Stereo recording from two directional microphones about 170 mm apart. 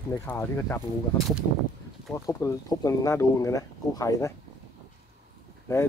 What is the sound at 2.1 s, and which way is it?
Speech, 20° left (ahead or behind).